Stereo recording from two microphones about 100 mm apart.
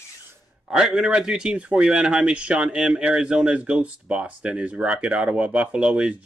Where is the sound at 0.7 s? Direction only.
5° right (ahead or behind).